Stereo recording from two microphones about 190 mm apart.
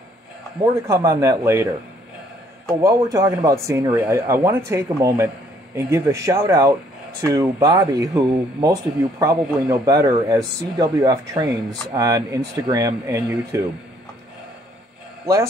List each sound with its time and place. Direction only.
0.6 s speech: 15° right (ahead or behind)
2.8 s speech: 20° right (ahead or behind)